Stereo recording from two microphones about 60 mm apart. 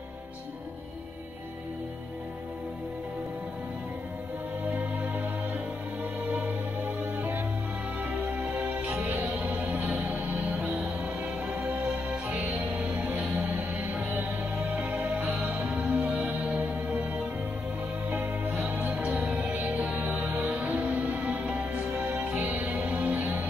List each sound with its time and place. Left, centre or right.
4.6 s music: right
6.3 s music: right
10.4 s music: centre
15.3 s music: centre; by 23.4 s right